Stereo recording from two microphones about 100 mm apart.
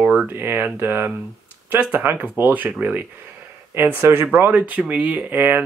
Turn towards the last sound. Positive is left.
turn(degrees=-20)  # may be behind; listen again after turning